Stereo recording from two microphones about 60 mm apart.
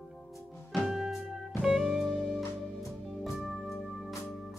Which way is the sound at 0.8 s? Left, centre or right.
Centre.